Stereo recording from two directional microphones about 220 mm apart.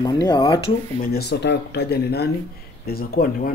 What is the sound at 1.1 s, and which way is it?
Speech, 50° left (ahead or behind).